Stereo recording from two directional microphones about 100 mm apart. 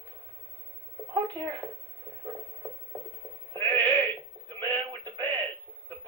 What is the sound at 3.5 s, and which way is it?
Sheep, 35° right (ahead or behind).